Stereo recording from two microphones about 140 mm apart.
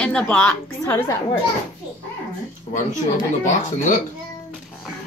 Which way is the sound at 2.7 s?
60° left (ahead or behind).